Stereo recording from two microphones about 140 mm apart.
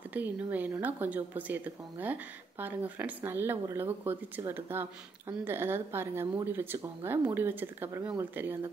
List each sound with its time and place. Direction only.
0.1 s speech: 10° right (ahead or behind)